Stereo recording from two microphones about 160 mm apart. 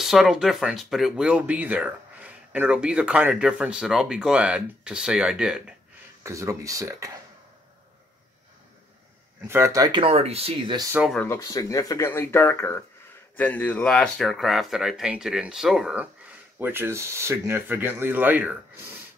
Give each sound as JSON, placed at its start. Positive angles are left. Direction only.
{"t": 0.0, "sound": "speech", "side_deg": 0}
{"t": 6.2, "sound": "speech", "side_deg": -20}
{"t": 9.5, "sound": "speech", "side_deg": -20}
{"t": 10.0, "sound": "speech", "side_deg": -40}
{"t": 11.1, "sound": "speech", "side_deg": 20}